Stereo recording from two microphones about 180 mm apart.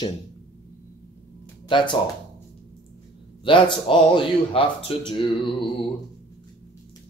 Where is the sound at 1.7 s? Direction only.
25° left (ahead or behind).